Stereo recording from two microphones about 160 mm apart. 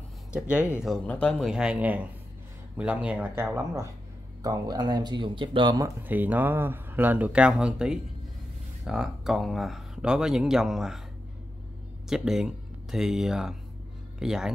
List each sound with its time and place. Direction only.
0.3 s speech: 5° right (ahead or behind)
0.8 s speech: 5° left (ahead or behind)
1.5 s speech: 5° right (ahead or behind); by 5.9 s 30° right (ahead or behind)
6.0 s speech: 10° right (ahead or behind)
12.1 s speech: 5° right (ahead or behind)